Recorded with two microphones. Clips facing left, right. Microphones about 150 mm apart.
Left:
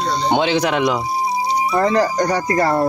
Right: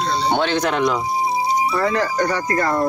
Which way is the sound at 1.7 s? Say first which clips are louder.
Left 7 dB; 35° left (ahead or behind).